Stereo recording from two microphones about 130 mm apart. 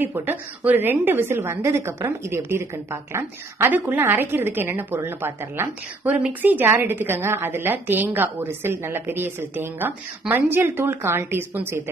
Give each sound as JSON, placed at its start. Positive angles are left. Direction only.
{"t": 0.0, "sound": "a woman's voice", "side_deg": -15}